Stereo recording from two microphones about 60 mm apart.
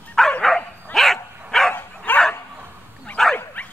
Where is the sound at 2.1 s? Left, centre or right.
Left.